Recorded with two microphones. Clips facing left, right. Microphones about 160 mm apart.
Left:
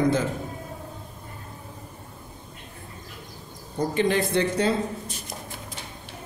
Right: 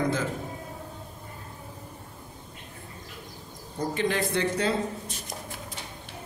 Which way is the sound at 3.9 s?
20° left (ahead or behind).